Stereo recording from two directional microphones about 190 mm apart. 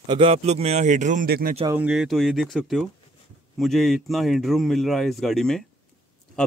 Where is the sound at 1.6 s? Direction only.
5° right (ahead or behind).